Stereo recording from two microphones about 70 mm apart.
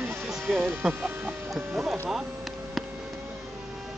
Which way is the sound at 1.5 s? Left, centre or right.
Centre.